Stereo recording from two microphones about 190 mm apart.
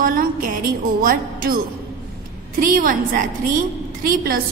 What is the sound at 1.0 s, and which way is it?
Speech, 50° right (ahead or behind).